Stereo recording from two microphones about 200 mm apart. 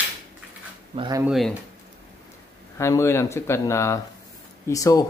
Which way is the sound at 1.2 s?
Centre (ahead or behind).